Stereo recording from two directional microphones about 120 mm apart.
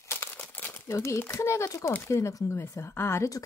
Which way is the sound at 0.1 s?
20° left (ahead or behind).